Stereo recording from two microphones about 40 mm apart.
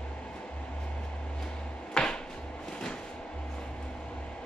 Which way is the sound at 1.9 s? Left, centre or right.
Centre.